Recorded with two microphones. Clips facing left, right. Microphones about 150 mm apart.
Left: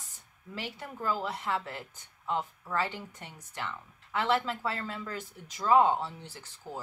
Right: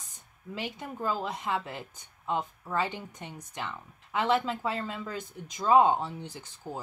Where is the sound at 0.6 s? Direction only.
15° right (ahead or behind).